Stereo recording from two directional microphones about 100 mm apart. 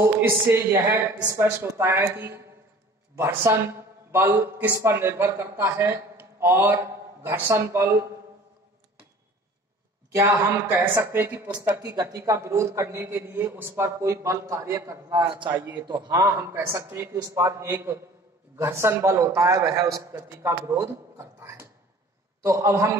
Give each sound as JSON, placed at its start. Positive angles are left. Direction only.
{"t": 0.0, "sound": "speech", "side_deg": -25}
{"t": 10.1, "sound": "speech", "side_deg": -30}